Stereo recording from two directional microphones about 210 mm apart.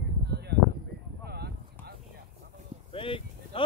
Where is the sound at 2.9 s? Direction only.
25° left (ahead or behind).